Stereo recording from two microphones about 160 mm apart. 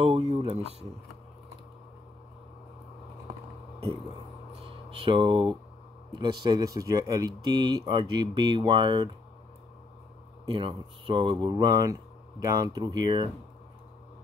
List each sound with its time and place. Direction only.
0.0 s a sound: 40° right (ahead or behind)
4.9 s speech: 30° right (ahead or behind)
10.4 s speech: 30° right (ahead or behind)